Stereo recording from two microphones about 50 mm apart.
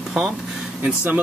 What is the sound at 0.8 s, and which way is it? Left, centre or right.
Speech, right.